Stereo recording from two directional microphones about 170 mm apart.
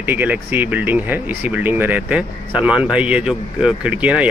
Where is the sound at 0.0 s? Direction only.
10° right (ahead or behind).